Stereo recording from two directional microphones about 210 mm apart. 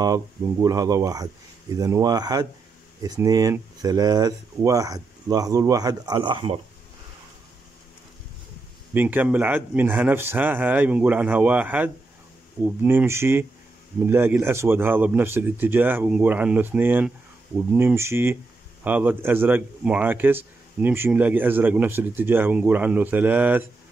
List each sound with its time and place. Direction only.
0.0 s a man's voice: 15° right (ahead or behind)
8.9 s a man's voice: 10° right (ahead or behind)